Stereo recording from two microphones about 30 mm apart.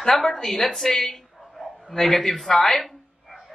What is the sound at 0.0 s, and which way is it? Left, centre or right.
A woman's voice, centre.